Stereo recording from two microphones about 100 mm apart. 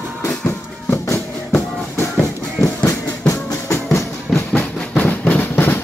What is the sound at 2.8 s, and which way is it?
Music, 30° left (ahead or behind).